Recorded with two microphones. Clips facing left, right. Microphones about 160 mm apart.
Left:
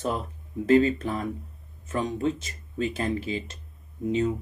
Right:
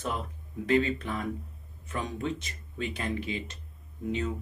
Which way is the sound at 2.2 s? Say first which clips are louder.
Left 6 dB; 40° left (ahead or behind).